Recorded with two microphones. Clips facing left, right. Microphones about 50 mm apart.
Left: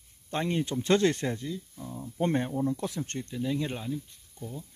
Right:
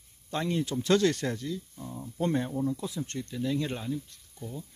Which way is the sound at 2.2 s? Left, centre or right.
Left.